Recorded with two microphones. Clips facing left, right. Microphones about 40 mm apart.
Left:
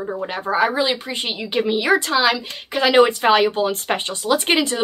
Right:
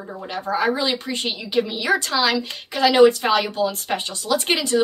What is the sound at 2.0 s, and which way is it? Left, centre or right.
Speech, centre.